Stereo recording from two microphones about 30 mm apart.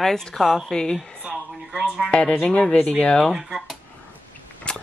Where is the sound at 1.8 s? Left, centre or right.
Centre.